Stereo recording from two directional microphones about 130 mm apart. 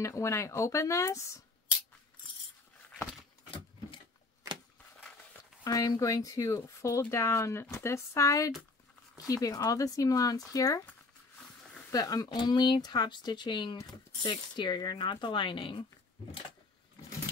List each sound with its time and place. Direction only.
0.0 s speech: 20° left (ahead or behind)
5.6 s speech: 25° left (ahead or behind)
11.9 s speech: 30° left (ahead or behind)